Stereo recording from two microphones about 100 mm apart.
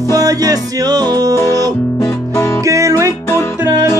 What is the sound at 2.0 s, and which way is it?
Guitar, 30° left (ahead or behind).